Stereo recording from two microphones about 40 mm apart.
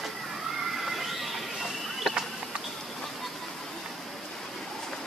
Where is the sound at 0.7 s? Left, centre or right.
Centre.